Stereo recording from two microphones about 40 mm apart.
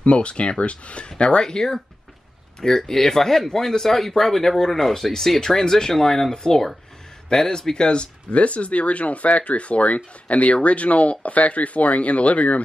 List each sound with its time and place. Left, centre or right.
0.0 s speech: left